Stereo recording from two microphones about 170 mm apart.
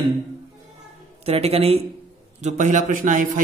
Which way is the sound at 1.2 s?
35° right (ahead or behind).